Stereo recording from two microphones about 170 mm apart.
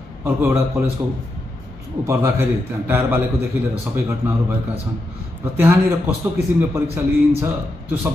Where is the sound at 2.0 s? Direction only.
15° right (ahead or behind).